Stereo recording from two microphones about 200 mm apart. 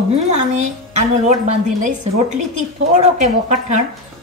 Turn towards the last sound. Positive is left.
turn(degrees=-35)  # may be behind; listen again after turning